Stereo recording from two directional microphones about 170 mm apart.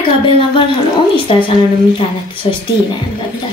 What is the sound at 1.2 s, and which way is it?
A woman's voice, 30° left (ahead or behind).